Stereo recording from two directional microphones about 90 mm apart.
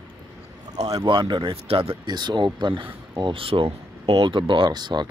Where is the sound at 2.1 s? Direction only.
55° right (ahead or behind).